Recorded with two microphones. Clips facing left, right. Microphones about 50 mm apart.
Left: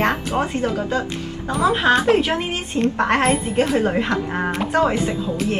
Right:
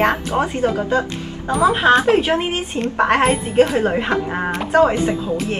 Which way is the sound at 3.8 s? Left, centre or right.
Centre.